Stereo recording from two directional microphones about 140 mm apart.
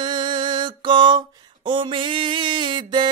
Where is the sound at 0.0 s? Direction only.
35° right (ahead or behind).